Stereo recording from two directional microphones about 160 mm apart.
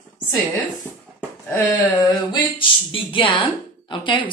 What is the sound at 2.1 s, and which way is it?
Speech, 30° left (ahead or behind).